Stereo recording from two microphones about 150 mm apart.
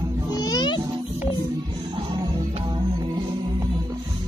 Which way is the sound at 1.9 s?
35° right (ahead or behind).